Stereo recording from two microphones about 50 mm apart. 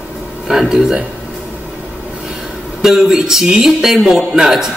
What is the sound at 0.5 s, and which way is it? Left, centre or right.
Speech, centre.